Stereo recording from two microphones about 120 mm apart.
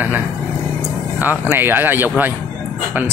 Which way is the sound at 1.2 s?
20° right (ahead or behind).